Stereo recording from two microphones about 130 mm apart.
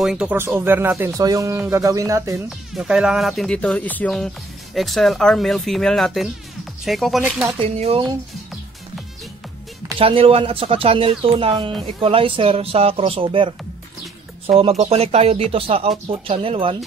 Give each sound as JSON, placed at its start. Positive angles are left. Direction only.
{"t": 0.0, "sound": "speech", "side_deg": -5}
{"t": 2.7, "sound": "speech", "side_deg": -5}
{"t": 4.7, "sound": "speech", "side_deg": 0}
{"t": 7.6, "sound": "speech", "side_deg": -50}
{"t": 9.9, "sound": "speech", "side_deg": -45}